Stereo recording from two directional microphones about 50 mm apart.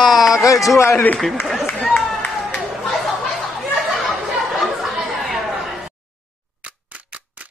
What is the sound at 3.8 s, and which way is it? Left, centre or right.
Chatter, centre.